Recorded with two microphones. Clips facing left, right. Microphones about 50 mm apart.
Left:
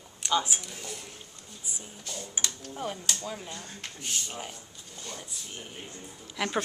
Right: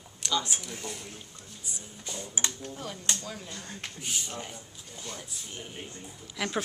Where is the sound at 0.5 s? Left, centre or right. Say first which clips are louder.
Even; centre.